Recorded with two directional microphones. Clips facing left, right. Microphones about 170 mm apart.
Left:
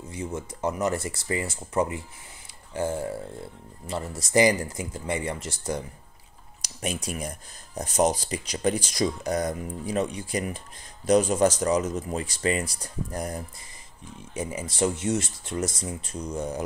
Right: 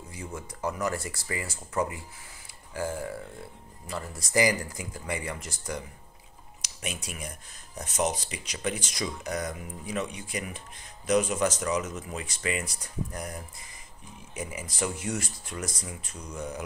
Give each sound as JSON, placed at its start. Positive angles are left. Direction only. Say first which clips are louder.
{"t": 0.1, "sound": "speech", "louder": "left 7 dB", "side_deg": 25}